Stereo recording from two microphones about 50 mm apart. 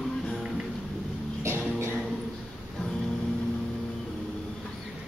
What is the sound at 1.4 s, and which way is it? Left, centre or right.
Music, right.